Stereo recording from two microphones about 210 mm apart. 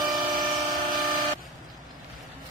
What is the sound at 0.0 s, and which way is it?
Train, 20° right (ahead or behind).